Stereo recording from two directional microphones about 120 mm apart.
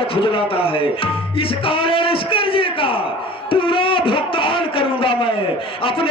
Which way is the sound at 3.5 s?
45° left (ahead or behind).